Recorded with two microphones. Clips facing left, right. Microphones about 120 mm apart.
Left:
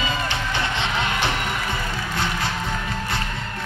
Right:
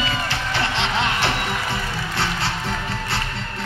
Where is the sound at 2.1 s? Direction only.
70° right (ahead or behind).